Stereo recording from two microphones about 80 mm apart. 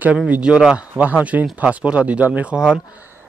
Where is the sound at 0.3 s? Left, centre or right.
Centre.